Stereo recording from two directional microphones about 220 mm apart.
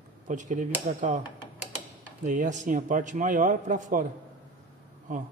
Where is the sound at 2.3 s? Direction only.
35° right (ahead or behind).